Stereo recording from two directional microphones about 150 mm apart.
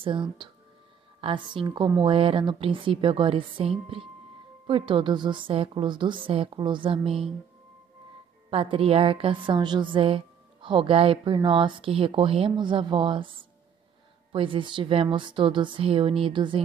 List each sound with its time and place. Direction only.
0.0 s a woman's voice: 35° right (ahead or behind)
8.5 s a woman's voice: 40° right (ahead or behind)